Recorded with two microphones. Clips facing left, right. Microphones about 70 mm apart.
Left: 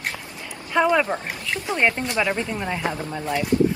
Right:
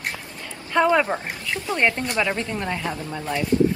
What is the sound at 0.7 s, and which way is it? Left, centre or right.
Speech, centre.